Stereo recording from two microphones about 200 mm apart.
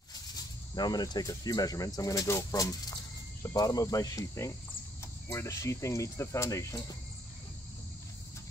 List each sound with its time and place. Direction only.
0.7 s speech: 20° left (ahead or behind)